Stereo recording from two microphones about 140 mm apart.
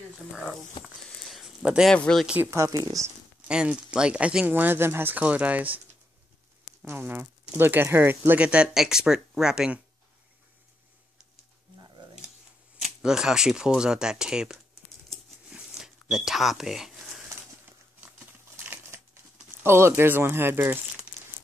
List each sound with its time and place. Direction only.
0.3 s speech: 5° right (ahead or behind)
0.8 s a sound: centre (ahead or behind)
1.9 s speech: 5° left (ahead or behind)
2.2 s speech: 10° right (ahead or behind)
2.5 s speech: 25° right (ahead or behind)
3.4 s speech: 5° right (ahead or behind)
6.8 s speech: 15° right (ahead or behind)
12.8 s speech: 5° right (ahead or behind)
15.0 s a sound: 5° right (ahead or behind)
18.0 s crumpling: 10° right (ahead or behind)